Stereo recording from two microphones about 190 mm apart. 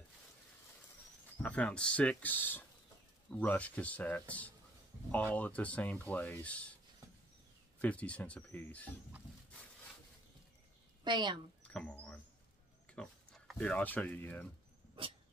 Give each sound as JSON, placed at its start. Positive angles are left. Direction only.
{"t": 1.4, "sound": "speech", "side_deg": 5}
{"t": 7.8, "sound": "speech", "side_deg": 5}
{"t": 11.1, "sound": "a woman's voice", "side_deg": -25}
{"t": 11.6, "sound": "speech", "side_deg": 5}